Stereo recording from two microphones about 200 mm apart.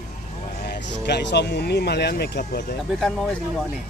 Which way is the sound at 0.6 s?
60° left (ahead or behind).